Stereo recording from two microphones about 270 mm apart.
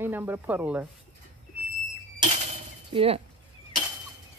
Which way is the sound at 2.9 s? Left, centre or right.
Right.